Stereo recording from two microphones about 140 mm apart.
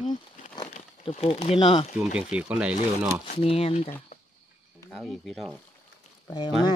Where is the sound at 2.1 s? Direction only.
10° right (ahead or behind).